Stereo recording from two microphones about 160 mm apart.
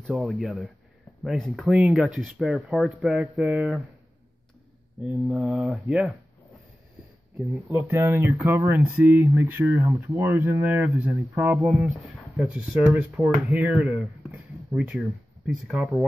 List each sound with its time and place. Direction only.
0.0 s speech: centre (ahead or behind)
5.3 s speech: 5° right (ahead or behind)
7.7 s speech: 15° right (ahead or behind)
11.5 s speech: centre (ahead or behind)